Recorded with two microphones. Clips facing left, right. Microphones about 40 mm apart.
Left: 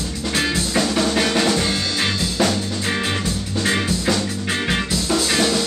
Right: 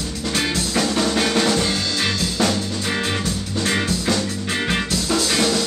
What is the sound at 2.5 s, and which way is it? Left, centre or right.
Music, centre.